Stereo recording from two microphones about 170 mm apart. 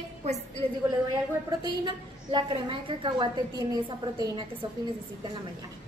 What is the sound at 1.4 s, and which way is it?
A woman's voice, 25° right (ahead or behind).